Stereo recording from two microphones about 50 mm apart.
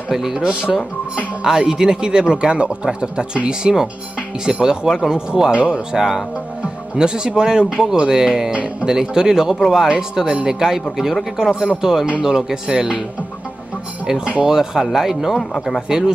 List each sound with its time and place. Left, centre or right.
0.1 s a man's voice: centre
14.0 s a man's voice: centre